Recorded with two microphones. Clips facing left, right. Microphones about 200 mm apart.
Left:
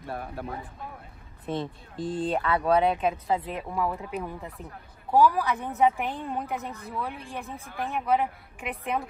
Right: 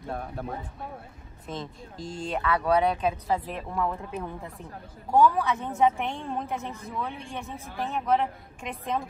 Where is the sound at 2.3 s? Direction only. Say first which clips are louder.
Right 1 dB; 25° left (ahead or behind).